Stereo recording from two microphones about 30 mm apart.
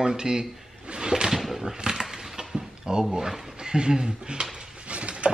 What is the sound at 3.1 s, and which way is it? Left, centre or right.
Speech, centre.